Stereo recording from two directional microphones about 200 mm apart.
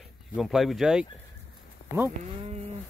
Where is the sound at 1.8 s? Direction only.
50° left (ahead or behind).